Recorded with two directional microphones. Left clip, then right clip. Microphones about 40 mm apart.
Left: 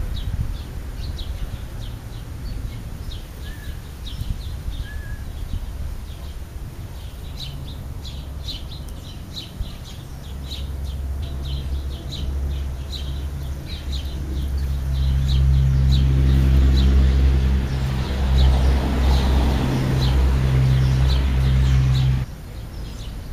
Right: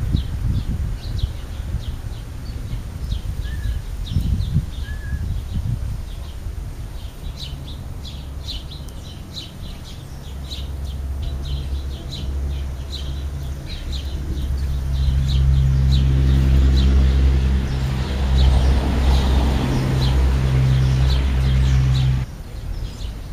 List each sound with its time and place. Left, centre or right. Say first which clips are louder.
0.1 s a sound: right 8 dB; left
15.1 s vehicle: right 1 dB; centre
21.6 s bird: right 1 dB; centre